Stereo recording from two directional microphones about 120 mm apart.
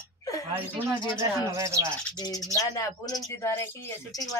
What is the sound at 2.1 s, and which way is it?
Speech, 35° left (ahead or behind).